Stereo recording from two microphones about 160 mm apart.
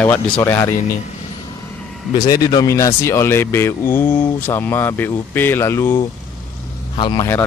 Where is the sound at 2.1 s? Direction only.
25° left (ahead or behind).